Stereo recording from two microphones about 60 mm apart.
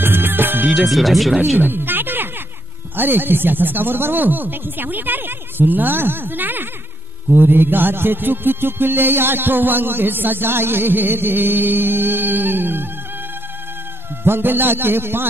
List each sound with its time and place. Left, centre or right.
0.0 s music: right
0.7 s speech: centre
1.6 s a sound: right
3.0 s music: right
14.2 s music: right